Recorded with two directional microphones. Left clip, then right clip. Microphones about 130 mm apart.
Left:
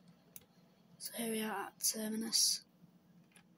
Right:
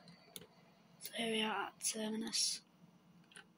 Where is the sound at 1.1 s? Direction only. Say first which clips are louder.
Right 2 dB; 55° left (ahead or behind).